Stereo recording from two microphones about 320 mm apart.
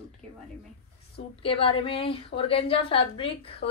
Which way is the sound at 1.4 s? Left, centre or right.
Centre.